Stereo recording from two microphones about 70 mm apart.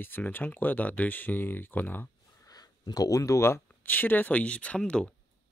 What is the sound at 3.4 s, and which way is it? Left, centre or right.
Speech, left.